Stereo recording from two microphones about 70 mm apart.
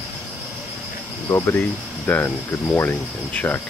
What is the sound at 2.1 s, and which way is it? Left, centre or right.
Speech, left.